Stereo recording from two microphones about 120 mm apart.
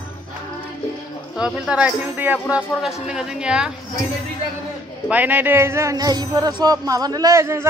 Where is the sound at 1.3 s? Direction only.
5° right (ahead or behind).